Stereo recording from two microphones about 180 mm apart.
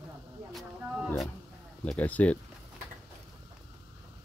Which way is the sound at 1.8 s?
10° left (ahead or behind).